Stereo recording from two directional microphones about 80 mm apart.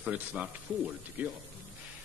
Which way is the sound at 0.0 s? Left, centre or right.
Centre.